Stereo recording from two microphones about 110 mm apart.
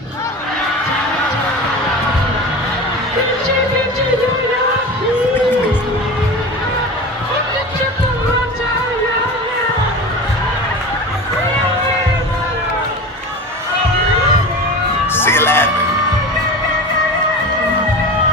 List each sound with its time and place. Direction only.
15.1 s music: 20° left (ahead or behind)